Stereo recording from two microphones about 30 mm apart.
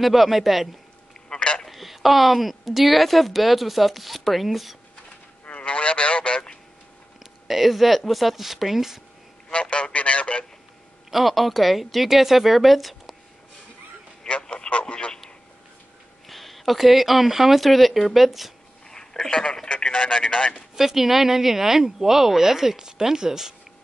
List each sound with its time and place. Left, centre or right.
0.0 s a woman's voice: centre
1.3 s a sound: left
1.7 s a woman's voice: centre
5.5 s a sound: left
7.4 s a woman's voice: centre
9.5 s a man's voice: left
11.1 s a woman's voice: centre
14.3 s a sound: left
14.7 s speech: left
16.3 s speech: centre
17.6 s a woman's voice: centre
18.9 s speech: centre
19.7 s a man's voice: left
20.5 s speech: centre